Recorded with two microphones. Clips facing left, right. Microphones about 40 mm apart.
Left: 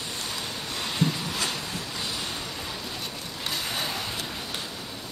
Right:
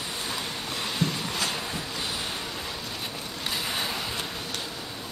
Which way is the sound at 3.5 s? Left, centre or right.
Centre.